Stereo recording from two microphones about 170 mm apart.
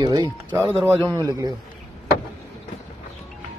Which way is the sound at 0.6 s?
15° right (ahead or behind).